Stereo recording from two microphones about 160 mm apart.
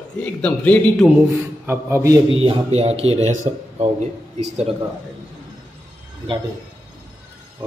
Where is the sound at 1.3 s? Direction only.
15° right (ahead or behind).